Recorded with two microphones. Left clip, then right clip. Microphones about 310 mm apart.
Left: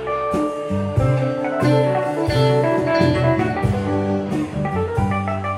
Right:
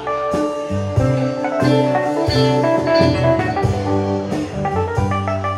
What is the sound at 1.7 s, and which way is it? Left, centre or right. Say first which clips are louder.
Music: right 1 dB; centre.